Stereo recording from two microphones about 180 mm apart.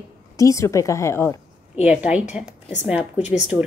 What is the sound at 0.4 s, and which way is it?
A woman's voice, 15° left (ahead or behind).